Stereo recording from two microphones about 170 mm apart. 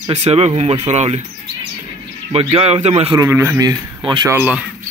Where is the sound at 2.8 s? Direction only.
40° right (ahead or behind).